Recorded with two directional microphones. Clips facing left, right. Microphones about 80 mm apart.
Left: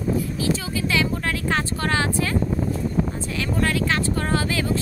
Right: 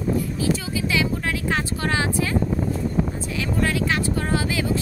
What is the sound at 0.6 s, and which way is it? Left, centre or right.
Speech, centre.